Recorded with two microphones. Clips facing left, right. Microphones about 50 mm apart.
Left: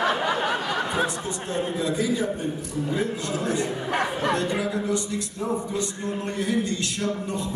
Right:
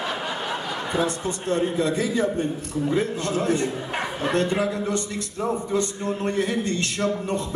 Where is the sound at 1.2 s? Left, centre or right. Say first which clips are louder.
Right 4 dB; right.